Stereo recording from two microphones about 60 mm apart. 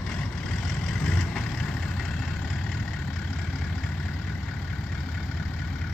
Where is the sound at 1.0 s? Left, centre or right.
Centre.